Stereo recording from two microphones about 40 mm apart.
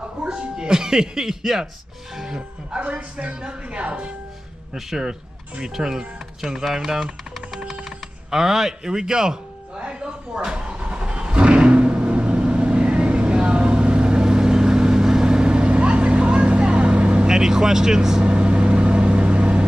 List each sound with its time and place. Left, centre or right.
0.3 s speech: centre
2.7 s a man's voice: right
4.7 s speech: centre
9.8 s vehicle: right
17.3 s speech: centre
18.2 s vehicle: right